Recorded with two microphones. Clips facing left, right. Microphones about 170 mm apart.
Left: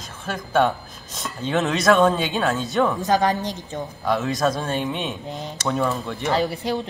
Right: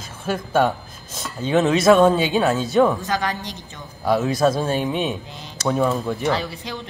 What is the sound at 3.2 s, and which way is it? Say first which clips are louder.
Speech: left 5 dB; 40° left (ahead or behind).